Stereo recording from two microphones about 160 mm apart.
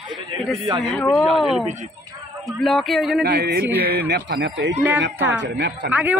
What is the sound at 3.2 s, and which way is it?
Speech, 90° right.